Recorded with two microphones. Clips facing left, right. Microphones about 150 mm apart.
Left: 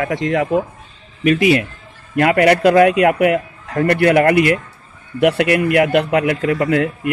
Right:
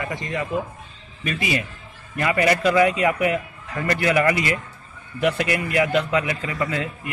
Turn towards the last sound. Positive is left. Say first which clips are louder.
# left 10 dB
turn(degrees=65)  # may be behind; listen again after turning